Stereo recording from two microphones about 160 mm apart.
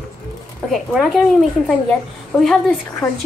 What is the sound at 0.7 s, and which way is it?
A woman's voice, centre (ahead or behind).